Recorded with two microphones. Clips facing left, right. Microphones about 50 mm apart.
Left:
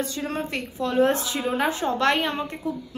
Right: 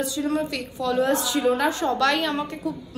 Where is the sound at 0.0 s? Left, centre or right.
Left.